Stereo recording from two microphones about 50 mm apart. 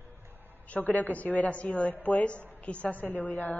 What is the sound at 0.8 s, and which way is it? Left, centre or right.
A woman's voice, left.